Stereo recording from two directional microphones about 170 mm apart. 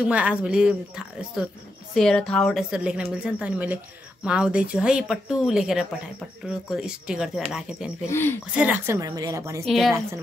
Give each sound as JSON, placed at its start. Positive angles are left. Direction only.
{"t": 0.0, "sound": "speech", "side_deg": -5}
{"t": 8.1, "sound": "speech", "side_deg": 15}
{"t": 8.5, "sound": "a woman's voice", "side_deg": -10}
{"t": 9.7, "sound": "speech", "side_deg": 0}